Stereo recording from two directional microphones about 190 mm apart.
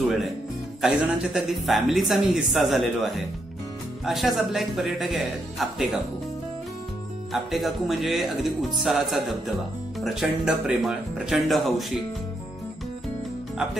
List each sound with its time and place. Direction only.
0.0 s music: centre (ahead or behind)
0.7 s speech: centre (ahead or behind)
7.3 s speech: centre (ahead or behind)